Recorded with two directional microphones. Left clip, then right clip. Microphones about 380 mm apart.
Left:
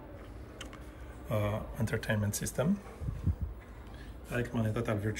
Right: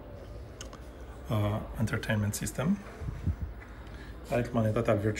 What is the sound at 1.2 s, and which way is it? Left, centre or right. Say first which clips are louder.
Speech: even; centre.